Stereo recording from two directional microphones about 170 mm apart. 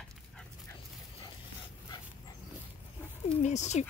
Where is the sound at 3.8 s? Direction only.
40° left (ahead or behind).